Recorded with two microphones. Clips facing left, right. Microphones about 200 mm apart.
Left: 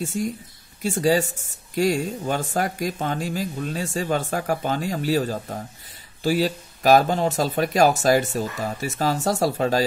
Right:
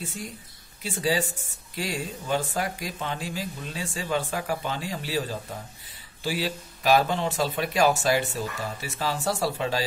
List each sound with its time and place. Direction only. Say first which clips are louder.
0.2 s speech: left 11 dB; 45° left (ahead or behind)